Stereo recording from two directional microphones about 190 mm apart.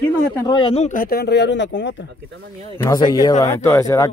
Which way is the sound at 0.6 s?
30° left (ahead or behind).